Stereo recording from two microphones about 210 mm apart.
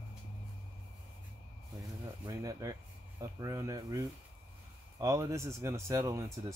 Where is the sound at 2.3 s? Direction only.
15° right (ahead or behind).